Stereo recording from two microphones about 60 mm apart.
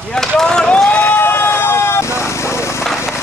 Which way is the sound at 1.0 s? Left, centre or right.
Left.